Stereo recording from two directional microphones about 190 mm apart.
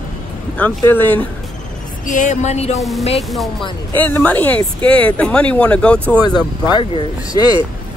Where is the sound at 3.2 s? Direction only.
Centre (ahead or behind).